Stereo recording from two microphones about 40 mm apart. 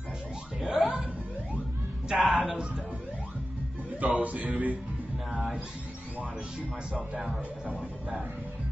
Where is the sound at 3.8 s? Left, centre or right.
Right.